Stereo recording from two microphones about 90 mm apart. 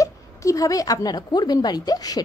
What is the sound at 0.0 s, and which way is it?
A woman's voice, 35° left (ahead or behind).